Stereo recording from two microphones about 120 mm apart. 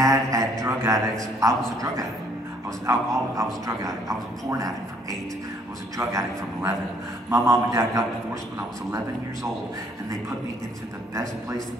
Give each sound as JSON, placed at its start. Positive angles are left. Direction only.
{"t": 0.0, "sound": "mantra", "side_deg": -30}
{"t": 1.4, "sound": "speech", "side_deg": -30}
{"t": 5.9, "sound": "speech", "side_deg": -25}